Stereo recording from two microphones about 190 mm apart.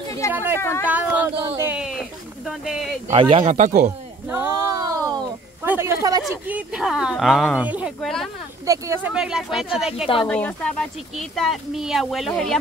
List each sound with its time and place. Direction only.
0.3 s speech: 10° right (ahead or behind)
0.6 s speech: 10° left (ahead or behind)
0.8 s speech: 10° right (ahead or behind)
1.6 s a sound: 5° right (ahead or behind)
3.1 s speech: 30° right (ahead or behind)
3.5 s speech: 40° right (ahead or behind)
4.3 s a sound: 15° right (ahead or behind)
6.3 s speech: 10° right (ahead or behind)
8.6 s speech: 15° right (ahead or behind)
9.1 s speech: 5° right (ahead or behind)